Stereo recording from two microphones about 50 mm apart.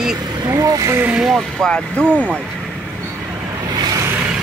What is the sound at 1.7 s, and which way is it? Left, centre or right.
Speech, left.